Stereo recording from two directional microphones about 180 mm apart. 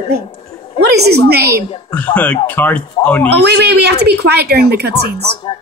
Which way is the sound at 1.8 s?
5° left (ahead or behind).